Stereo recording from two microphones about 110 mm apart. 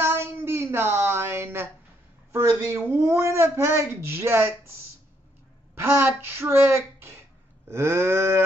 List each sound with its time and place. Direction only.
0.0 s a sound: 20° right (ahead or behind)
2.3 s speech: 25° right (ahead or behind)
5.8 s speech: 20° right (ahead or behind)